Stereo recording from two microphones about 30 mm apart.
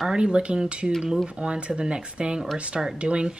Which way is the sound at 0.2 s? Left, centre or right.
Right.